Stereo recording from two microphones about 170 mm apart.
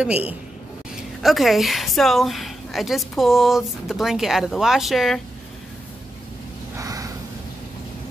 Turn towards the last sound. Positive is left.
turn(degrees=-20)  # may be behind; listen again after turning